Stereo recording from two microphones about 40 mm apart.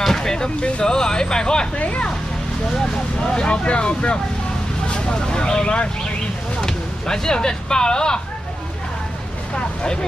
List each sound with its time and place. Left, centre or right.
0.0 s speech: centre
1.8 s speech: left
2.7 s speech: centre
3.4 s speech: left